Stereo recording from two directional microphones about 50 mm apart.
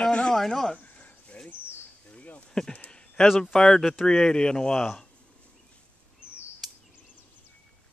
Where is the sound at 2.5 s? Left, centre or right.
Centre.